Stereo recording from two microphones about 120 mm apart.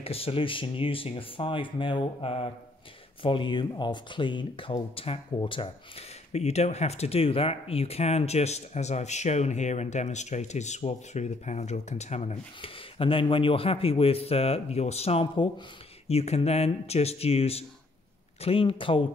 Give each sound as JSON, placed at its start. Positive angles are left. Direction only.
{"t": 0.0, "sound": "speech", "side_deg": 50}
{"t": 6.3, "sound": "speech", "side_deg": 65}